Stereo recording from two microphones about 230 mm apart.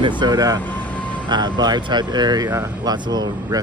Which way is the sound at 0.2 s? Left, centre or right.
Centre.